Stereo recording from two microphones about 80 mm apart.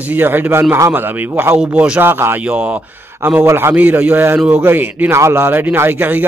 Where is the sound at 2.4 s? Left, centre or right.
Centre.